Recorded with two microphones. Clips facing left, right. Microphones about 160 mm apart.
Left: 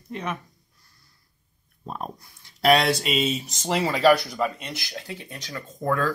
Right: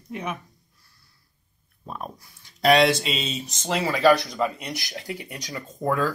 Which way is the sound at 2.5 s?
5° left (ahead or behind).